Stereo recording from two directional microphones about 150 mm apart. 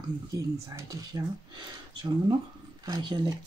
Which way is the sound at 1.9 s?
30° right (ahead or behind).